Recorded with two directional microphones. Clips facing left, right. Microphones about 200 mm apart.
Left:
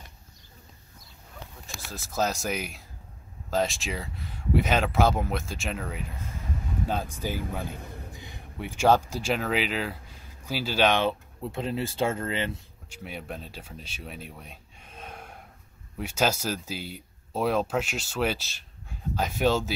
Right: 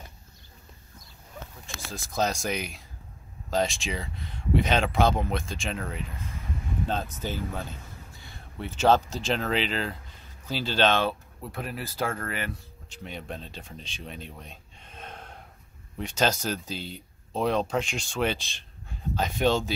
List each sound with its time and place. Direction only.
1.9 s speech: 5° left (ahead or behind); by 12.5 s 25° left (ahead or behind)
12.9 s speech: 5° left (ahead or behind)